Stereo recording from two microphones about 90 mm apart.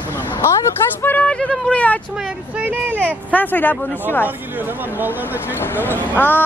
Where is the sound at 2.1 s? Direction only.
10° right (ahead or behind).